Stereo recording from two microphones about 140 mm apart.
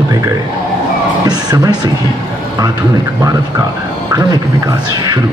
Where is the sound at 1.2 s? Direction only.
25° right (ahead or behind).